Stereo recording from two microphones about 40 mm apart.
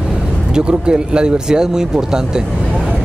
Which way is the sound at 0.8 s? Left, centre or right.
Right.